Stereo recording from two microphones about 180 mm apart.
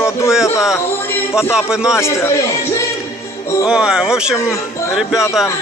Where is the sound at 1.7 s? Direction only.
5° right (ahead or behind).